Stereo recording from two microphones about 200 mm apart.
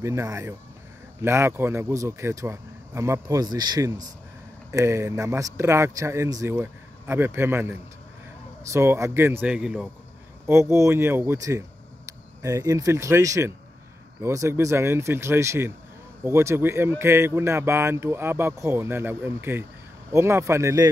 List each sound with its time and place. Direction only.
0.0 s speech: 15° right (ahead or behind)